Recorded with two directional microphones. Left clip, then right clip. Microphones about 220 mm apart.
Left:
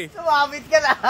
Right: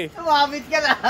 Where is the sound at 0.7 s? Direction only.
20° left (ahead or behind).